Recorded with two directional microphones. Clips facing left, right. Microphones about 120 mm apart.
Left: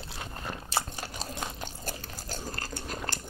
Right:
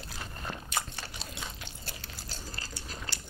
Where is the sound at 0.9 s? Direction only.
45° left (ahead or behind).